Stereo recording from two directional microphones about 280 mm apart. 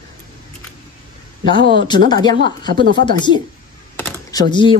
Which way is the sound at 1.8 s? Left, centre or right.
Centre.